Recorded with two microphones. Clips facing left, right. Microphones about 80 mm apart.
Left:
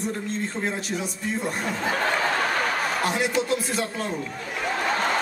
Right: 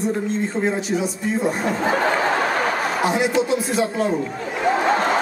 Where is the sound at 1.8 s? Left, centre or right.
Right; by 4.1 s centre.